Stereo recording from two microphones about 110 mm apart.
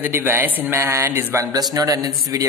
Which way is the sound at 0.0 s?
20° right (ahead or behind).